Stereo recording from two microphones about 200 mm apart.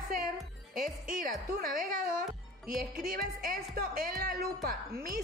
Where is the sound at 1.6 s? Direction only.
45° right (ahead or behind).